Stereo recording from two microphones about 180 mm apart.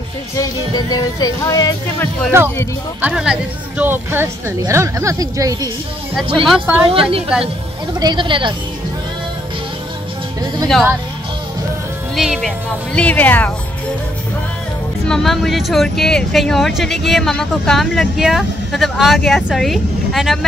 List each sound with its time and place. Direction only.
0.4 s speech: 20° left (ahead or behind)
3.0 s a woman's voice: 5° right (ahead or behind); by 5.7 s 20° right (ahead or behind)
6.4 s speech: 5° right (ahead or behind)
6.9 s a woman's voice: 30° right (ahead or behind)
10.7 s speech: 5° right (ahead or behind)
12.2 s speech: centre (ahead or behind)
15.0 s speech: centre (ahead or behind)